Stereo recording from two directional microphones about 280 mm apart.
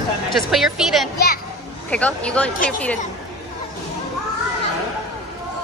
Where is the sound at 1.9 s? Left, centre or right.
Centre.